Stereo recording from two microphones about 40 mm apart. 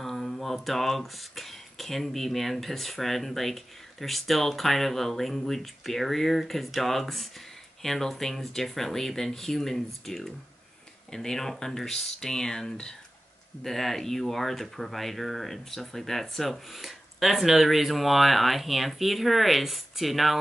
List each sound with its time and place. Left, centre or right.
0.0 s speech: centre